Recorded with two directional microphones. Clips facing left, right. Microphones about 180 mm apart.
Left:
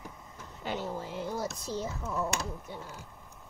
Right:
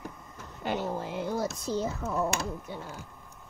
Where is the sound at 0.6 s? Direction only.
55° right (ahead or behind).